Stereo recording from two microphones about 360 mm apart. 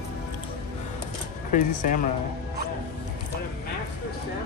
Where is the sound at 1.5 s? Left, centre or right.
Left.